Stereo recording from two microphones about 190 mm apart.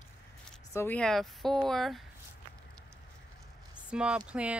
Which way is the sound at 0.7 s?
10° left (ahead or behind).